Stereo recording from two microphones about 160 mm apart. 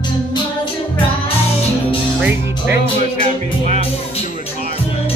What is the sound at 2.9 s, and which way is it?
Music, 45° right (ahead or behind).